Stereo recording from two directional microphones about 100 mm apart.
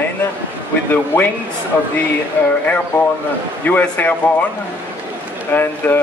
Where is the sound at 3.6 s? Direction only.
15° left (ahead or behind).